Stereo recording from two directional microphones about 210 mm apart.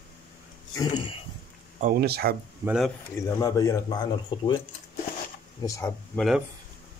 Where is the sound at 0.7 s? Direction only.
25° left (ahead or behind).